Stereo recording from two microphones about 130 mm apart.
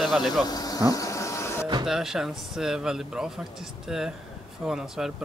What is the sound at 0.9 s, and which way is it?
Printer, 25° left (ahead or behind).